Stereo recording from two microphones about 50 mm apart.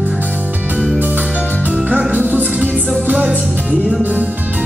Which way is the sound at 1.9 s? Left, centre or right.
Right.